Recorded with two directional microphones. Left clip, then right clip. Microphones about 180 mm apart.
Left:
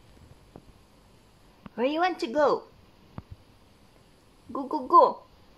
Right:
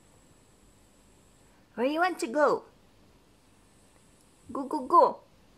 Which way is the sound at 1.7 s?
5° right (ahead or behind).